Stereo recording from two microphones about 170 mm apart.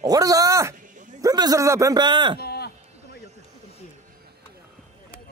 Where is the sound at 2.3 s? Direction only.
65° left (ahead or behind).